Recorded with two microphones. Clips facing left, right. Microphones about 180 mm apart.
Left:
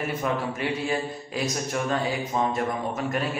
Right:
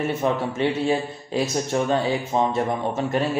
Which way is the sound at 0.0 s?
25° right (ahead or behind).